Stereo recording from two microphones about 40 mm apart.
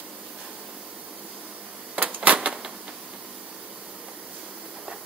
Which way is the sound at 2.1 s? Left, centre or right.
Right.